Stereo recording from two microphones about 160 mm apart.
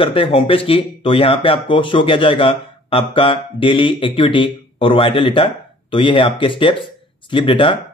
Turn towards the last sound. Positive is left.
turn(degrees=30)  # may be behind; listen again after turning